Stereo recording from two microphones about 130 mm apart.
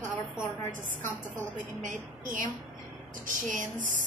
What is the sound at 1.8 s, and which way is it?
Speech, 80° right.